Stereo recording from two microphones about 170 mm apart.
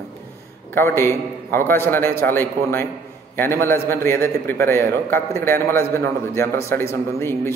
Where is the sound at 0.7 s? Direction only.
15° left (ahead or behind).